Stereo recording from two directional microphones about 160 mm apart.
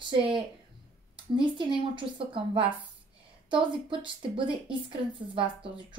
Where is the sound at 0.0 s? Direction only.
30° right (ahead or behind).